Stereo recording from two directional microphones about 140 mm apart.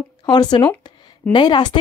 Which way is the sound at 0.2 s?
30° left (ahead or behind).